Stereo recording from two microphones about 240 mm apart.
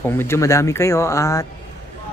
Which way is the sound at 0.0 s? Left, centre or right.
Centre.